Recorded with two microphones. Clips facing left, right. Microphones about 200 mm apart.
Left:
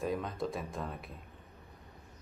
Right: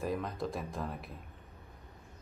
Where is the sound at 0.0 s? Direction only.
Centre (ahead or behind).